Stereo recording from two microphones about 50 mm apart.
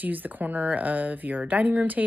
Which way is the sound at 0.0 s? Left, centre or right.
Right.